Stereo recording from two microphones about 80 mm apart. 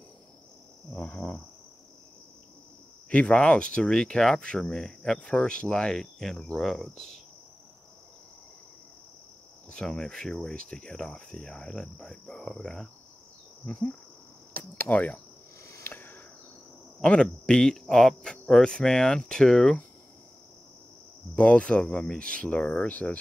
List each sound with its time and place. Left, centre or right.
0.9 s speech: centre
3.1 s speech: centre
9.7 s speech: centre
14.5 s cricket: centre
15.6 s a sound: left
17.0 s speech: centre
21.4 s speech: centre